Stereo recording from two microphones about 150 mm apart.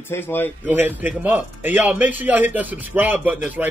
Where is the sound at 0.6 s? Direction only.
10° right (ahead or behind).